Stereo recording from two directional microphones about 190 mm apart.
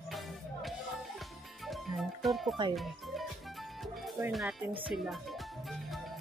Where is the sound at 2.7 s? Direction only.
Centre (ahead or behind).